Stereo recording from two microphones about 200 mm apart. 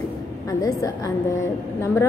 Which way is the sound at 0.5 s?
15° left (ahead or behind).